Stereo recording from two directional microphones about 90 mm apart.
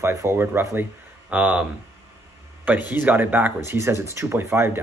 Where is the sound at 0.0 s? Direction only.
30° right (ahead or behind).